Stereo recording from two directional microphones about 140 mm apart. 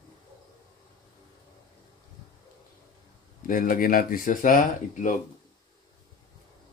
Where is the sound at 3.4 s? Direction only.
75° left (ahead or behind).